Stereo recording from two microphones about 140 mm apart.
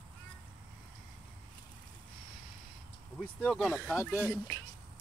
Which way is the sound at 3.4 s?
5° left (ahead or behind).